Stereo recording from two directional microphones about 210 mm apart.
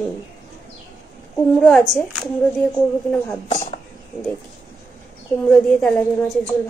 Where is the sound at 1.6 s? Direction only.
Centre (ahead or behind).